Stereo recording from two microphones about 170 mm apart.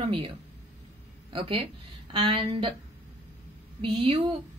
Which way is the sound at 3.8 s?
30° right (ahead or behind).